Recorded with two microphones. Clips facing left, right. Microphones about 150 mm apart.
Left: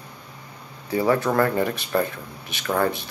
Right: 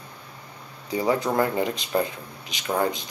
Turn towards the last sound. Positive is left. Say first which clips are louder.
# left 2 dB
turn(degrees=-20)  # may be behind; listen again after turning